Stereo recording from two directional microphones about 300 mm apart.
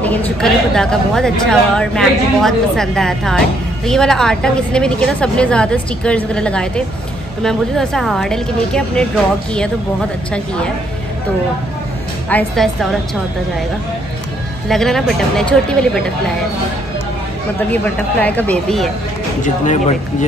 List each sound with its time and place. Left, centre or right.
0.0 s a woman's voice: centre
12.3 s a woman's voice: centre
14.7 s a woman's voice: centre
18.2 s a woman's voice: centre
19.4 s speech: left